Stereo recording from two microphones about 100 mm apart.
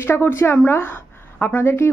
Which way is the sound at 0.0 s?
25° left (ahead or behind).